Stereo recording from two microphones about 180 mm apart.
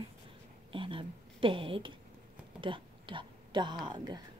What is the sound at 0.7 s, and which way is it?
A woman's voice, 30° right (ahead or behind).